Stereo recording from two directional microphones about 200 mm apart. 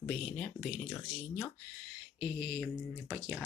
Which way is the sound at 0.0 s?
5° left (ahead or behind).